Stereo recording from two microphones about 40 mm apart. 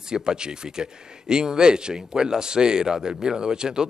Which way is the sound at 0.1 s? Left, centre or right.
Centre.